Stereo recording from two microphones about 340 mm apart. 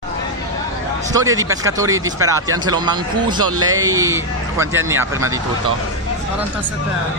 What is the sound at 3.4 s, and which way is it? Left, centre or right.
Speech, right.